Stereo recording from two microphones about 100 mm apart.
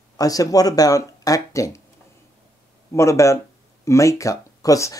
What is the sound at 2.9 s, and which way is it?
Speech, 30° left (ahead or behind).